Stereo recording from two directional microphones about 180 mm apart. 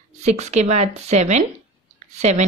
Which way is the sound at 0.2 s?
40° right (ahead or behind).